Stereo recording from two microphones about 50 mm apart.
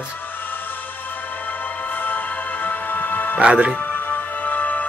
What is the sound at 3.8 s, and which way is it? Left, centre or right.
Music, left.